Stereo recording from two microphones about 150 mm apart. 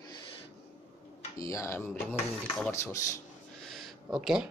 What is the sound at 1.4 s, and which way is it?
Speech, 20° left (ahead or behind).